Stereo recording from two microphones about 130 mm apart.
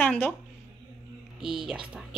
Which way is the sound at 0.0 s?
15° left (ahead or behind).